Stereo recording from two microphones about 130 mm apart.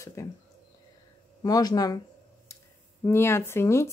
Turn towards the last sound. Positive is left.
turn(degrees=20)  # may be behind; listen again after turning